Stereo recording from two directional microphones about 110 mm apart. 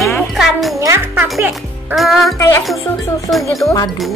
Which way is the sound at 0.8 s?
25° right (ahead or behind).